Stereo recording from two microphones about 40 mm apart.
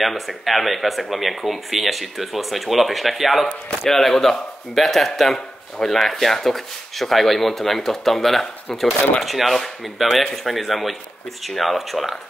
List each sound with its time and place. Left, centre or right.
0.0 s speech: centre